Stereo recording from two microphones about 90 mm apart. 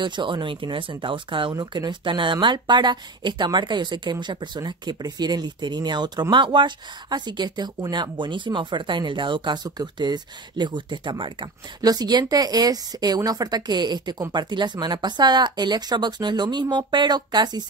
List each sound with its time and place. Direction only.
0.0 s speech: 60° right (ahead or behind)
1.5 s speech: 45° right (ahead or behind)
11.8 s speech: 45° right (ahead or behind)